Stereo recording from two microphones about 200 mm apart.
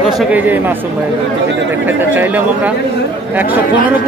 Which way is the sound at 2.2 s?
10° right (ahead or behind).